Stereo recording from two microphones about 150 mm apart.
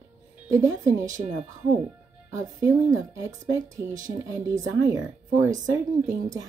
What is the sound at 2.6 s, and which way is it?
Speech, 20° right (ahead or behind).